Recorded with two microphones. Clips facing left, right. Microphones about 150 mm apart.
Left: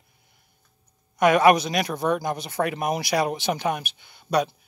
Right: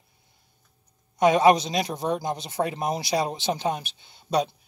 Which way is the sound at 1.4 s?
20° right (ahead or behind).